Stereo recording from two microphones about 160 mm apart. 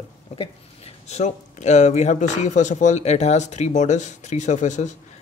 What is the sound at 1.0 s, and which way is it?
Speech, 45° left (ahead or behind).